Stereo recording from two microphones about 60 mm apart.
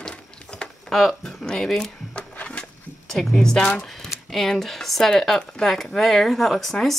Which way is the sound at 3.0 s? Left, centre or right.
Centre.